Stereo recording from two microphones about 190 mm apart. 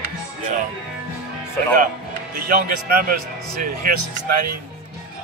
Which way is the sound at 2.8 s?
50° right (ahead or behind).